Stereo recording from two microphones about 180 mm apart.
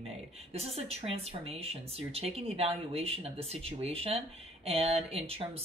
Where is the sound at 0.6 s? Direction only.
35° right (ahead or behind).